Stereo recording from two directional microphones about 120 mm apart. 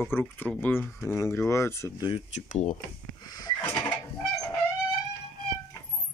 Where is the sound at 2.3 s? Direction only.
85° left.